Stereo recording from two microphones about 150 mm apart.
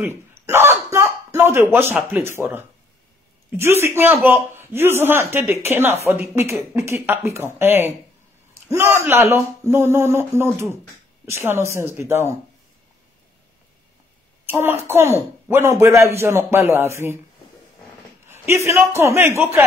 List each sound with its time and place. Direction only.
0.0 s a sound: 15° right (ahead or behind)
2.1 s a man's voice: 15° right (ahead or behind)
14.5 s a man's voice: 15° right (ahead or behind)
18.3 s a man's voice: 15° right (ahead or behind)